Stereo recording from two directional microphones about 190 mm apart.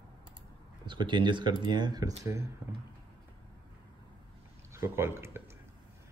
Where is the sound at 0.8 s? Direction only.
25° right (ahead or behind).